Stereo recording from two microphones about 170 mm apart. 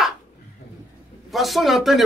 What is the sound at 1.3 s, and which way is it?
Speech, centre (ahead or behind).